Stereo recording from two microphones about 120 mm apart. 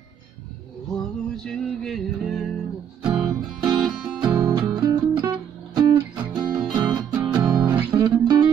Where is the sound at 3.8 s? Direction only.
5° right (ahead or behind).